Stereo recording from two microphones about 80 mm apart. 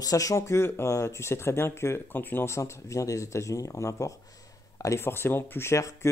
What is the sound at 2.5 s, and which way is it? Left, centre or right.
Speech, left.